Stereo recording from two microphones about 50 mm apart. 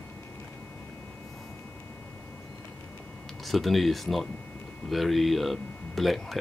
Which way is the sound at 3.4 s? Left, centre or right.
Centre.